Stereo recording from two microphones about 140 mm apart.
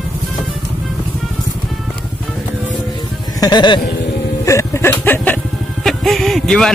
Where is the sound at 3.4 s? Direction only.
30° left (ahead or behind).